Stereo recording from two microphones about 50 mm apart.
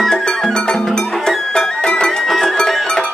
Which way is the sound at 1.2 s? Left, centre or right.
Centre.